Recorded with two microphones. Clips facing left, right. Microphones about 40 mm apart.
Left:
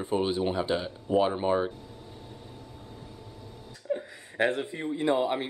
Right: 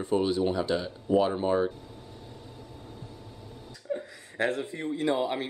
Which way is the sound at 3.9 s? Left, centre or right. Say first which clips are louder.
Left 2 dB; left.